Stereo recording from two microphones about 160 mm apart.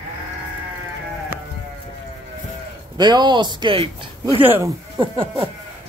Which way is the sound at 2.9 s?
25° right (ahead or behind).